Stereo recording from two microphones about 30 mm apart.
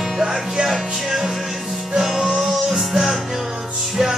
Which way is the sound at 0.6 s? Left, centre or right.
Right.